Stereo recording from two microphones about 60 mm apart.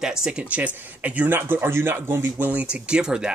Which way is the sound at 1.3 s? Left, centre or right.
Right.